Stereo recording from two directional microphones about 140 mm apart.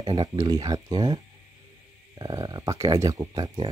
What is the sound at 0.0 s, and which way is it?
Speech, 30° right (ahead or behind).